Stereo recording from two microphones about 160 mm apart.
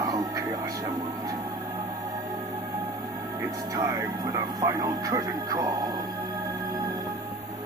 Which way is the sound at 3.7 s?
20° right (ahead or behind).